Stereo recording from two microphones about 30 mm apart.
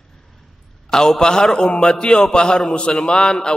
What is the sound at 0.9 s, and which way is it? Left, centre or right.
A man's voice, left.